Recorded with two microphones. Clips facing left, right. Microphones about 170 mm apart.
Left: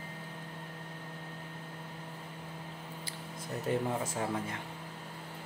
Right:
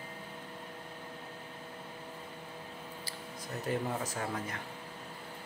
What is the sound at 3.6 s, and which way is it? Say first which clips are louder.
Speech: left 2 dB; 25° left (ahead or behind).